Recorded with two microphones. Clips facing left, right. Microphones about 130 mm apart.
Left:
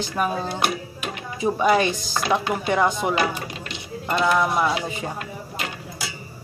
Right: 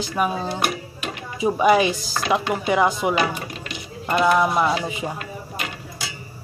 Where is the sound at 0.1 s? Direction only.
5° right (ahead or behind).